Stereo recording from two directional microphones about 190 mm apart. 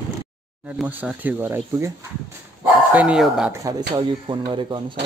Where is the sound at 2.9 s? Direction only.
5° right (ahead or behind).